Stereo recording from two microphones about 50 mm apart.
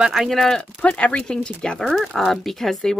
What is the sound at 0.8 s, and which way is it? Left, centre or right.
Speech, left.